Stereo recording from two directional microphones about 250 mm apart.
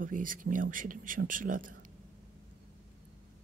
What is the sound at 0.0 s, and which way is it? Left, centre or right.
Speech, right.